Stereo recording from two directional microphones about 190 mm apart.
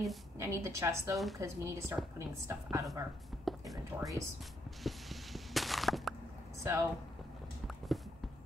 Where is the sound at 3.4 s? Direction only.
Centre (ahead or behind).